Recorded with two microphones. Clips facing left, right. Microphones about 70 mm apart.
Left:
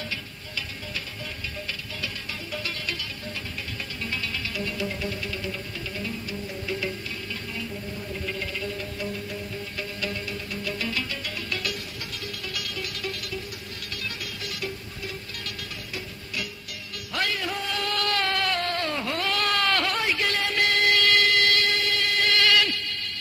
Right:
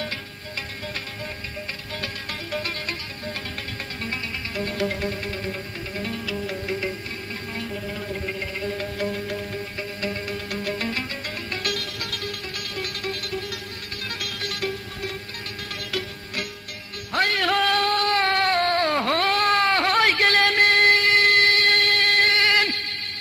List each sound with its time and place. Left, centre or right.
0.0 s music: right
4.6 s music: right
8.7 s music: right
10.5 s music: right
11.6 s music: right
17.1 s music: right
17.4 s a sound: right
19.9 s a sound: right
22.3 s a sound: right